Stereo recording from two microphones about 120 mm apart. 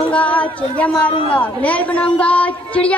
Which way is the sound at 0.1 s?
10° left (ahead or behind).